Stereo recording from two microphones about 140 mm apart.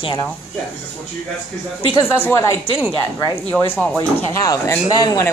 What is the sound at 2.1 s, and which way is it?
Speech, 15° left (ahead or behind).